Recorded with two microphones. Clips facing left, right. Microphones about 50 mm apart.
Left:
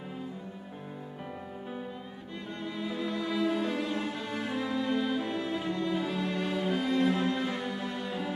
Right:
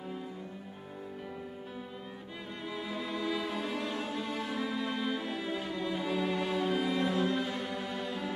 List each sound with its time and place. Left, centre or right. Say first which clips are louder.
2.6 s cello: left 4 dB; centre
4.6 s music: left 7 dB; centre